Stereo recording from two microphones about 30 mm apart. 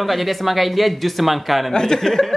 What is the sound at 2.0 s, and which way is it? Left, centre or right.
Speech, centre.